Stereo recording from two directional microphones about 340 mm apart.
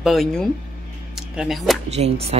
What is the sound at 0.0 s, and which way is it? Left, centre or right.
Speech, centre.